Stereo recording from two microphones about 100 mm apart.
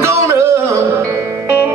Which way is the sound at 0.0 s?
25° right (ahead or behind).